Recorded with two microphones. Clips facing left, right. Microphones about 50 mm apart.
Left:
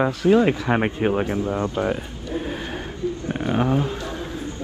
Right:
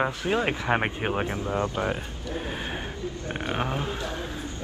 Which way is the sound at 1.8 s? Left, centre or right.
Centre.